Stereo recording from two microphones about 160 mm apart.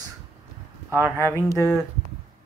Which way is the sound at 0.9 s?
15° right (ahead or behind).